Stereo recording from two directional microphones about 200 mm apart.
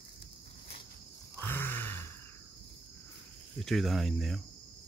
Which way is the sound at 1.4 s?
10° left (ahead or behind).